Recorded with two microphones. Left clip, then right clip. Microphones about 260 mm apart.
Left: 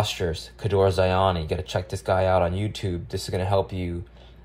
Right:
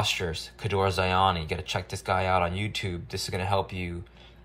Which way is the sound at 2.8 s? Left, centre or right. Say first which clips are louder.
Left 2 dB; centre.